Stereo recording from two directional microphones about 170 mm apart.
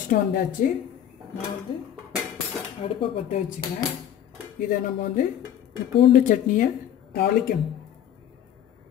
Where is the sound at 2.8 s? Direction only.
35° left (ahead or behind).